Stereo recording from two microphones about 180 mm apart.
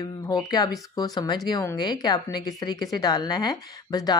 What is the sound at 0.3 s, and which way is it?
A woman's voice, 20° left (ahead or behind).